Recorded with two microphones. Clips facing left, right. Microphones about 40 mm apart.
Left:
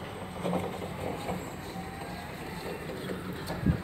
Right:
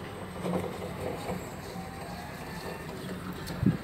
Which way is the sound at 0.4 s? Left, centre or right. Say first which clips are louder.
Left 1 dB; left.